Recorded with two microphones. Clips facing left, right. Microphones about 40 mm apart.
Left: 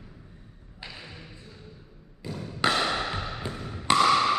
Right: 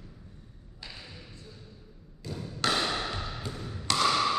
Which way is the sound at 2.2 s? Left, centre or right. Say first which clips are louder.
Left 4 dB; left.